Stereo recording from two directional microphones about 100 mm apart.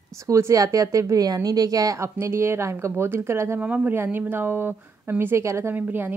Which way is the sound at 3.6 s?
15° right (ahead or behind).